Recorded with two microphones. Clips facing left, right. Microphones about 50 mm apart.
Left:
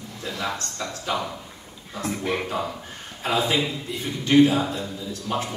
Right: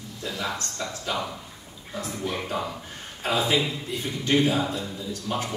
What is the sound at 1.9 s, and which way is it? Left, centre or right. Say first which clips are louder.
Speech: left 4 dB; left.